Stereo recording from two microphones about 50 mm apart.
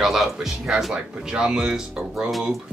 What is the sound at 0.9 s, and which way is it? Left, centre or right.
Speech, centre.